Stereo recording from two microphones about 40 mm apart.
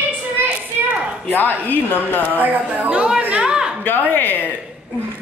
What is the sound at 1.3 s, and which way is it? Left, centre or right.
A woman's voice, left.